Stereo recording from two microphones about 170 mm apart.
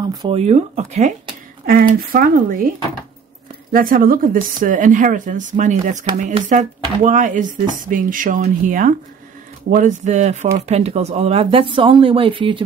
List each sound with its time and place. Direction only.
0.0 s speech: 25° right (ahead or behind)
0.4 s speech: 40° right (ahead or behind)
1.7 s speech: 60° right (ahead or behind)
3.7 s speech: 55° right (ahead or behind); by 12.6 s 30° right (ahead or behind)